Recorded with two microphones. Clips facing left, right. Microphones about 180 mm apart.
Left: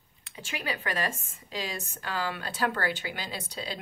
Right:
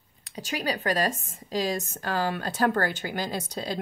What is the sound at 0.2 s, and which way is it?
Speech, 40° right (ahead or behind).